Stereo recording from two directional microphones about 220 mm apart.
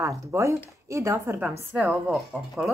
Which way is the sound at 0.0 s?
15° right (ahead or behind).